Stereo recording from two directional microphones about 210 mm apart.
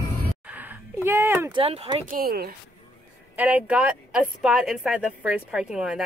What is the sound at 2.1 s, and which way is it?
Speech, 45° right (ahead or behind).